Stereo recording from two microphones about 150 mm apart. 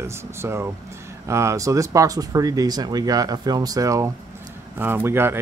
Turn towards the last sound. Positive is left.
turn(degrees=-15)  # may be behind; listen again after turning